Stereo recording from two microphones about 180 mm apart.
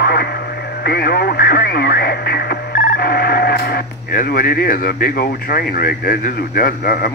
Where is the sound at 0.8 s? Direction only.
55° left (ahead or behind).